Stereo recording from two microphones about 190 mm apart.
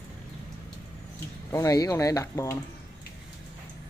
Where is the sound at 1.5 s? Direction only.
20° left (ahead or behind).